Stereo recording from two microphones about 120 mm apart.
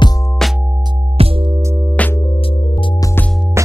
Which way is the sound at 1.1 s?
50° right (ahead or behind).